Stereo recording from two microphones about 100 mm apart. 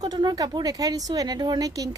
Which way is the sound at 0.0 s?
40° right (ahead or behind).